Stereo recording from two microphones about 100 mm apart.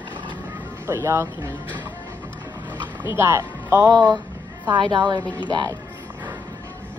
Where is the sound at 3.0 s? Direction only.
25° right (ahead or behind).